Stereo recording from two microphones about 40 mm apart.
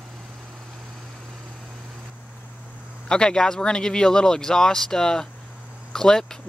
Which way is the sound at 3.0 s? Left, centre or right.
Centre.